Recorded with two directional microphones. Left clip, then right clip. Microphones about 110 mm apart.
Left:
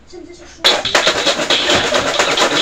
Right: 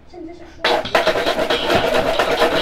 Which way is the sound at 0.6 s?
20° right (ahead or behind).